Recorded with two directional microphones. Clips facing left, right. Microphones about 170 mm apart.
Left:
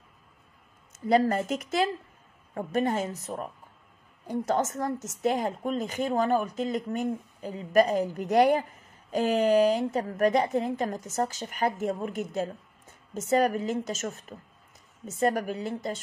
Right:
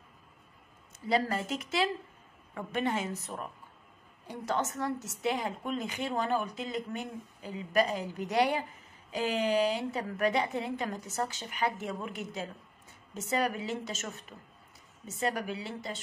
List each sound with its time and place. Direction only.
0.9 s a woman's voice: 45° left (ahead or behind)